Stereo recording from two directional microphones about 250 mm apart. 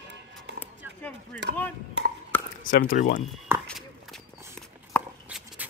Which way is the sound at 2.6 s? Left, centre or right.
Left.